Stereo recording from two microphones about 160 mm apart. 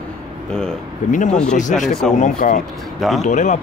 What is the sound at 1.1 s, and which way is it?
Speech, 50° left (ahead or behind).